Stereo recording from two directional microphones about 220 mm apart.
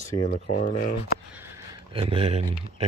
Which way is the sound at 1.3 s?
10° right (ahead or behind).